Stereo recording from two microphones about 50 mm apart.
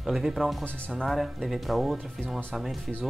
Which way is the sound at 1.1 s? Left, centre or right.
Centre.